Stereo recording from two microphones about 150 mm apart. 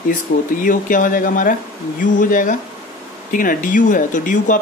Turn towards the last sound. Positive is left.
turn(degrees=60)  # may be behind; listen again after turning